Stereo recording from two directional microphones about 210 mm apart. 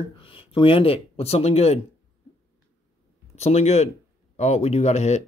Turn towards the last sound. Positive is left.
turn(degrees=30)  # may be behind; listen again after turning